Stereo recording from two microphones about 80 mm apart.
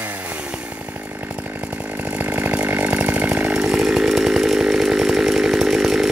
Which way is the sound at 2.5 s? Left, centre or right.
Centre.